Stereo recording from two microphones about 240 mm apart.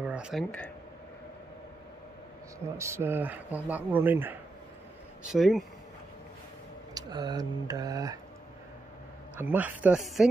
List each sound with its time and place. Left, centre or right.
0.0 s speech: centre
2.6 s speech: centre
6.9 s speech: centre
9.4 s speech: centre